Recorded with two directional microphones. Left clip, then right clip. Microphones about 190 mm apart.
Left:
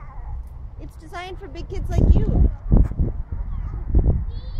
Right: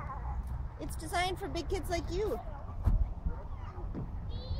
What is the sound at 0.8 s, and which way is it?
Speech, 45° right (ahead or behind).